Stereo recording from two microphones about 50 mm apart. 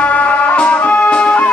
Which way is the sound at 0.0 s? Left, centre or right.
Left.